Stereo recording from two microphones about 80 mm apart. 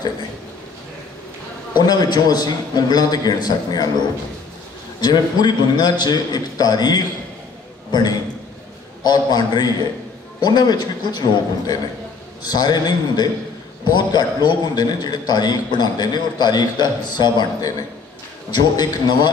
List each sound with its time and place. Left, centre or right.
1.8 s a man's voice: left
5.0 s a man's voice: left